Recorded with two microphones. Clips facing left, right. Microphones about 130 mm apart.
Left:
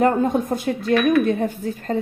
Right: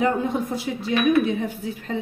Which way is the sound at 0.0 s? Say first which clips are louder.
Left 4 dB; 50° left (ahead or behind).